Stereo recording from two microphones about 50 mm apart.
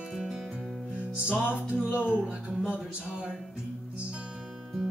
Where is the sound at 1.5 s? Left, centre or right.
Right.